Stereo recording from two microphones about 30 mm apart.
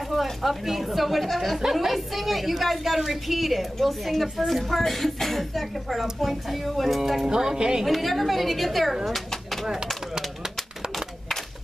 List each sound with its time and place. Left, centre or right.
0.1 s a woman's voice: centre
7.2 s speech: right
7.8 s a woman's voice: centre